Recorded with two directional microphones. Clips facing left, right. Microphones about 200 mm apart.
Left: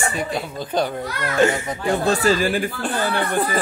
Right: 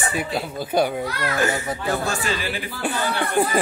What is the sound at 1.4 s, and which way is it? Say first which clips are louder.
Speech: left 7 dB; 25° left (ahead or behind).